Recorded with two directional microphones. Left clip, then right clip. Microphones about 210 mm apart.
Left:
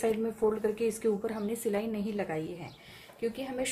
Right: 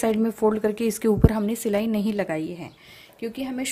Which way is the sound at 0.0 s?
50° right (ahead or behind).